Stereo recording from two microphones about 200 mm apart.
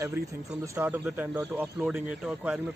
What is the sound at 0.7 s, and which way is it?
Speech, 10° right (ahead or behind).